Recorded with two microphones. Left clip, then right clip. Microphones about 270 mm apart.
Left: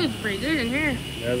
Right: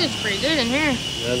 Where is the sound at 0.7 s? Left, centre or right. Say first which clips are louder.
Right 4 dB; right.